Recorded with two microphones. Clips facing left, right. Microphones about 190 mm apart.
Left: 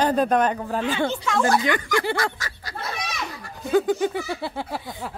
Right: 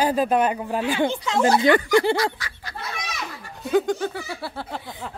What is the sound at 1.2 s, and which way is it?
Speech, 25° right (ahead or behind).